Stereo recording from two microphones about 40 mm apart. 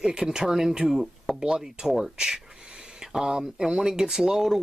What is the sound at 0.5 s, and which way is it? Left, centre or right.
Speech, centre.